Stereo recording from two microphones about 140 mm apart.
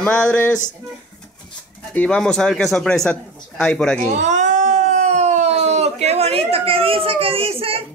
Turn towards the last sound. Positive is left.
turn(degrees=-45)  # may be behind; listen again after turning